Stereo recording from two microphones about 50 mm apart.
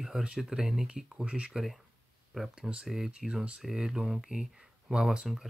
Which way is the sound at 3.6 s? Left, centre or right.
Centre.